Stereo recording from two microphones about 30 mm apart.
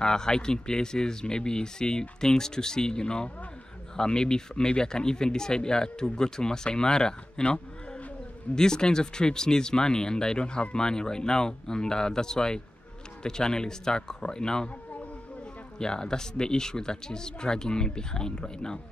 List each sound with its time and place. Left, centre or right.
0.0 s speech: left
7.4 s a sound: left
8.5 s speech: left
15.8 s speech: left